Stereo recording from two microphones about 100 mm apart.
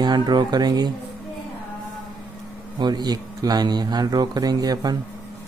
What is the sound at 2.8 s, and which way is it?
Speech, 45° right (ahead or behind).